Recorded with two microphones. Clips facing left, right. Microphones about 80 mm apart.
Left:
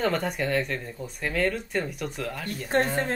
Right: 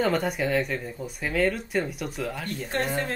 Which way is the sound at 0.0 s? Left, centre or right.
Centre.